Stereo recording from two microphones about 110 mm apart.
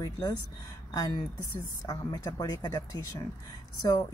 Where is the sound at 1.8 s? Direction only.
35° left (ahead or behind).